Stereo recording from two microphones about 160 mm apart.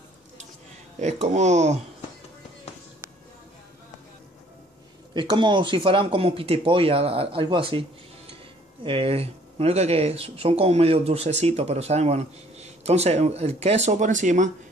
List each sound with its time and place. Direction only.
0.9 s speech: 45° right (ahead or behind)
5.1 s speech: 30° right (ahead or behind)
8.8 s speech: 35° right (ahead or behind); by 14.5 s 50° right (ahead or behind)